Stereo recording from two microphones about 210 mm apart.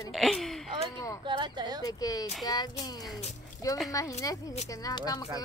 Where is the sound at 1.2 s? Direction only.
20° right (ahead or behind).